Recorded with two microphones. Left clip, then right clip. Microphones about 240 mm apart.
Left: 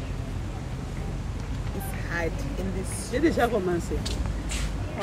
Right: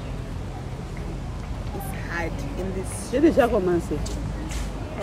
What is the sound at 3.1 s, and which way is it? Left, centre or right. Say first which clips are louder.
Speech: right 5 dB; right.